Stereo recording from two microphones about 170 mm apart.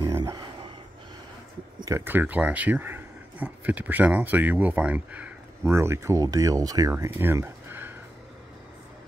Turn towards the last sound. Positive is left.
turn(degrees=-15)  # may be behind; listen again after turning